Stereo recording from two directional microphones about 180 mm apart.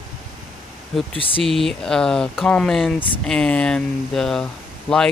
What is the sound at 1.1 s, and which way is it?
Speech, 30° left (ahead or behind).